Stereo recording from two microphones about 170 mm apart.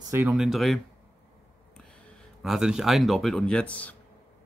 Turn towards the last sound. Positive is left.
turn(degrees=10)  # may be behind; listen again after turning